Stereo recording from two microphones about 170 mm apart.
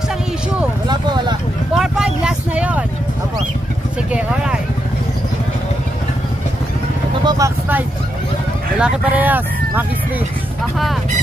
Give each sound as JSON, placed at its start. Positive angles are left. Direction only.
{"t": 0.8, "sound": "vehicle", "side_deg": -25}
{"t": 1.8, "sound": "vehicle", "side_deg": -5}
{"t": 7.2, "sound": "vehicle", "side_deg": -20}
{"t": 8.7, "sound": "speech", "side_deg": -5}